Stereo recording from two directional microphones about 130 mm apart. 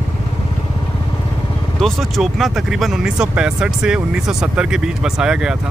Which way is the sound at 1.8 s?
Centre (ahead or behind).